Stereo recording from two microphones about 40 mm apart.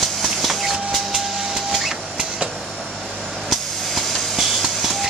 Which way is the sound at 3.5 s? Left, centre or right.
Centre.